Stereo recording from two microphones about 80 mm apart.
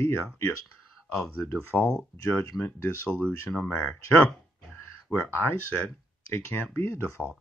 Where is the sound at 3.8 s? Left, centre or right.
Left.